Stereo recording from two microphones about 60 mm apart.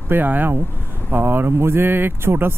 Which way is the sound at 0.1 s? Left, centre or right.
Right.